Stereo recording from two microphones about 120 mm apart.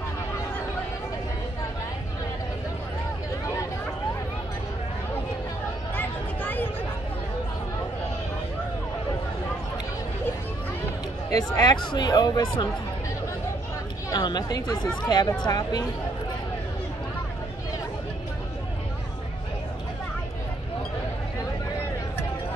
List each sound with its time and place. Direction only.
5.9 s a sound: 15° left (ahead or behind)
11.2 s speech: 35° left (ahead or behind)
14.1 s speech: 35° left (ahead or behind)